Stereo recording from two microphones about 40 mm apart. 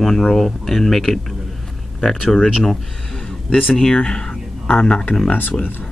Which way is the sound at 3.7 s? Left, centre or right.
Centre.